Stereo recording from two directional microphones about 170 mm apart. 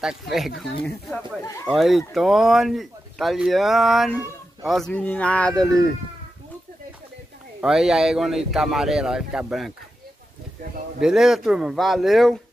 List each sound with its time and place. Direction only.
0.0 s speech: centre (ahead or behind)
1.4 s speech: 15° left (ahead or behind)
1.7 s speech: centre (ahead or behind)
7.6 s speech: 5° right (ahead or behind)
11.0 s speech: 5° right (ahead or behind)